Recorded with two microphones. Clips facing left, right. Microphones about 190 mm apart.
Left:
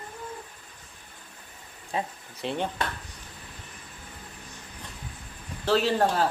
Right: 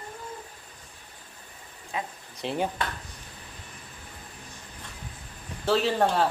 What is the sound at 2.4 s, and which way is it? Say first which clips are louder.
Speech: right 1 dB; 5° right (ahead or behind).